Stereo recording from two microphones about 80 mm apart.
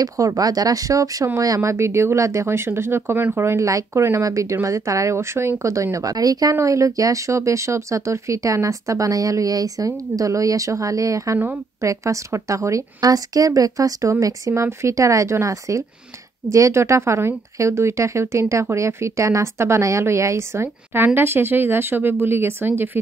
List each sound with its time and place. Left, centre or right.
0.0 s a woman's voice: right
14.5 s a woman's voice: right